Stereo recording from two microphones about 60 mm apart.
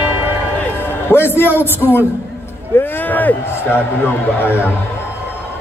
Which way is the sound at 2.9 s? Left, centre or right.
Left.